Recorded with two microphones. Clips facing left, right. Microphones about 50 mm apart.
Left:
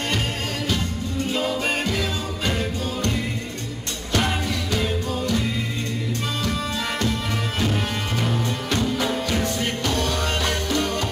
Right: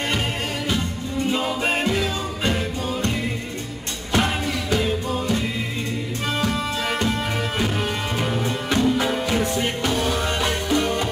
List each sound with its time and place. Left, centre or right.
1.3 s music: centre
8.2 s music: centre